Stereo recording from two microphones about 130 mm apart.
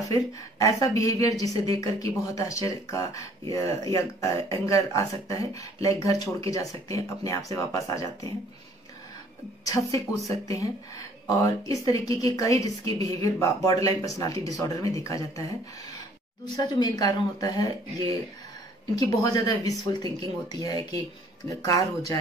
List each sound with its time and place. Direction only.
0.1 s speech: 25° left (ahead or behind)
9.7 s speech: 25° left (ahead or behind)
11.2 s speech: 25° left (ahead or behind)
16.5 s speech: 35° left (ahead or behind)
18.9 s speech: 30° left (ahead or behind)